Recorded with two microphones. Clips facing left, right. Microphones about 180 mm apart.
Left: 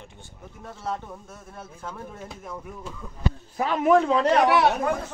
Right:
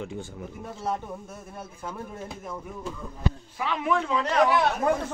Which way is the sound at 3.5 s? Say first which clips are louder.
Left 8 dB; 45° left (ahead or behind).